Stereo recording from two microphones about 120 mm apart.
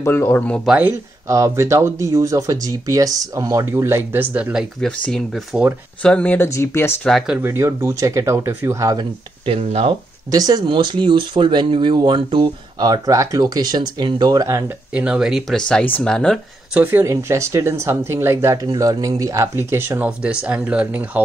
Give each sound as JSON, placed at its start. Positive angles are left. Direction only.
{"t": 0.0, "sound": "speech", "side_deg": 20}
{"t": 0.7, "sound": "speech", "side_deg": -10}
{"t": 1.3, "sound": "speech", "side_deg": -25}
{"t": 4.7, "sound": "speech", "side_deg": 10}
{"t": 5.5, "sound": "speech", "side_deg": -10}
{"t": 6.0, "sound": "speech", "side_deg": 10}
{"t": 7.1, "sound": "speech", "side_deg": 0}
{"t": 7.3, "sound": "speech", "side_deg": -20}
{"t": 9.5, "sound": "speech", "side_deg": -55}
{"t": 10.3, "sound": "speech", "side_deg": -35}
{"t": 15.0, "sound": "speech", "side_deg": -5}
{"t": 16.7, "sound": "speech", "side_deg": -15}
{"t": 20.1, "sound": "speech", "side_deg": -10}